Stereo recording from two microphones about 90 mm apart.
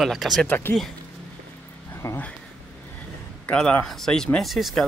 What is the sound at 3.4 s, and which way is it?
Speech, 15° left (ahead or behind).